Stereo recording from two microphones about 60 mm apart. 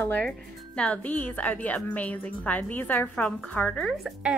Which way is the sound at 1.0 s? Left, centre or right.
Left.